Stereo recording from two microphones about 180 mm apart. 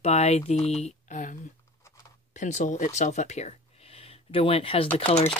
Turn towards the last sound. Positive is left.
turn(degrees=30)  # may be behind; listen again after turning